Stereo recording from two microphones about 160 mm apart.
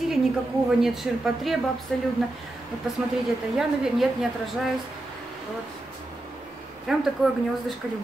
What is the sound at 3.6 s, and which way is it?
Speech, centre (ahead or behind).